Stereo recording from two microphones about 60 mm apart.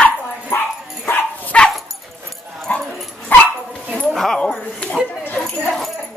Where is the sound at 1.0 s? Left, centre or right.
Left.